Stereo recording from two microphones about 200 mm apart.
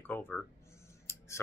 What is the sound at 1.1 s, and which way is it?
Scissors, 15° left (ahead or behind).